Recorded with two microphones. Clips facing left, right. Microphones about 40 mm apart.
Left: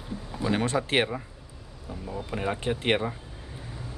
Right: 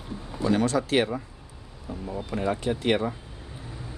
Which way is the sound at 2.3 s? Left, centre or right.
Left.